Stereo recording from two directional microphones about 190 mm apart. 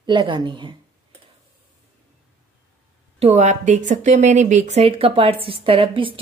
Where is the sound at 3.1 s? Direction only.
35° right (ahead or behind).